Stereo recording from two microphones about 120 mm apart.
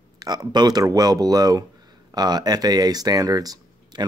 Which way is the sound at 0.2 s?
35° right (ahead or behind).